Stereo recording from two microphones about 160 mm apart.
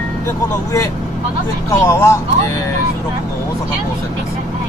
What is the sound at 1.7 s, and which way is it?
Speech, 20° left (ahead or behind).